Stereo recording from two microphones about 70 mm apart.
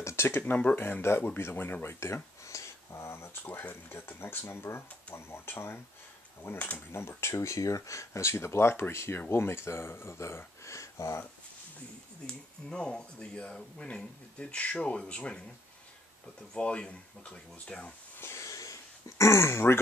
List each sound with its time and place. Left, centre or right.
0.0 s speech: left
0.4 s speech: left
0.8 s speech: left
12.3 s speech: centre
16.5 s speech: centre
18.2 s a sound: left